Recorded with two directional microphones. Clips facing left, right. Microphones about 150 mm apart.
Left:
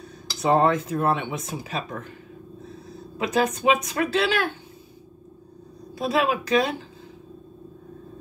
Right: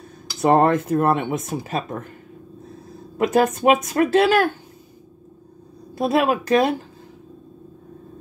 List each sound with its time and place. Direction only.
0.4 s speech: 55° right (ahead or behind)
3.2 s speech: 50° right (ahead or behind)
5.9 s speech: 50° right (ahead or behind)